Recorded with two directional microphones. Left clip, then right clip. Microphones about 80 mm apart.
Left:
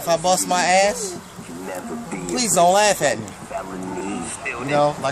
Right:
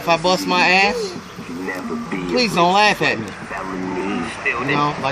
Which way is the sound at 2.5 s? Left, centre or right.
Left.